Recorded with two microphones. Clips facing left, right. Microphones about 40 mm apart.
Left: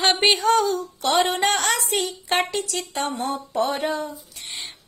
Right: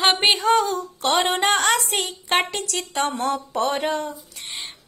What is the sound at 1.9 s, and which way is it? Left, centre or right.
Speech, right.